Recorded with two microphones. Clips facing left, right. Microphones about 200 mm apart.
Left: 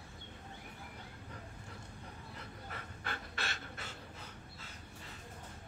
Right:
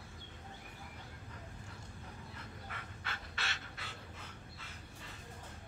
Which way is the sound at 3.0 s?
45° left (ahead or behind).